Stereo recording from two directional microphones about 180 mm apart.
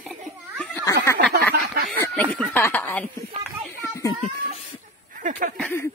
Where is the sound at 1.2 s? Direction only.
65° right (ahead or behind).